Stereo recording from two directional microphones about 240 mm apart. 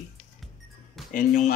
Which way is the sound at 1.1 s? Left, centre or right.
Left.